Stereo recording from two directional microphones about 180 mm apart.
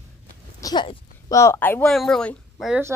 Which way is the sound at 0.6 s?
20° left (ahead or behind).